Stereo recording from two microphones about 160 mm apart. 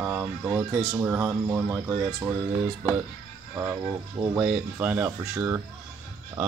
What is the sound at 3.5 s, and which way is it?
Speech, 15° right (ahead or behind).